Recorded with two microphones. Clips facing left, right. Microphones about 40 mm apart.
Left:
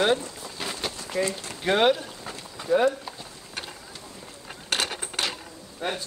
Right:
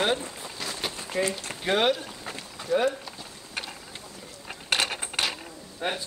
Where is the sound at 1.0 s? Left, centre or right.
Right.